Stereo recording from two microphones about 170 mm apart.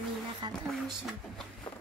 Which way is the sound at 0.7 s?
Centre (ahead or behind).